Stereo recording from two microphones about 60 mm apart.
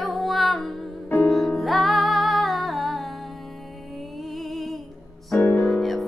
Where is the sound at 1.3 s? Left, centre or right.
Centre.